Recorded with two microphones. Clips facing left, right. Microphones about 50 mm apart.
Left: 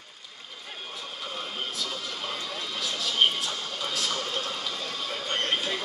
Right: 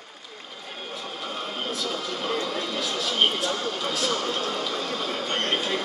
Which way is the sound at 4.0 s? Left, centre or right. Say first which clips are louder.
Right 4 dB; right.